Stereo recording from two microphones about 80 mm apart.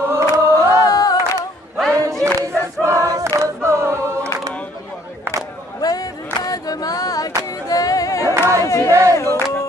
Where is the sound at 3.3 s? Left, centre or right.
Right.